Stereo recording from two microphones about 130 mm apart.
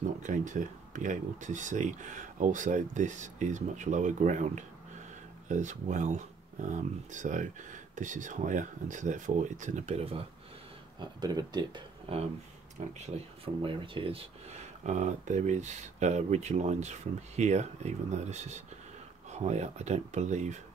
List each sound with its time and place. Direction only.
0.2 s speech: 80° right; by 10.2 s 50° right (ahead or behind)
11.0 s speech: 30° right (ahead or behind)
12.1 s speech: 45° right (ahead or behind)
13.6 s speech: 40° right (ahead or behind)
14.8 s speech: 65° right (ahead or behind)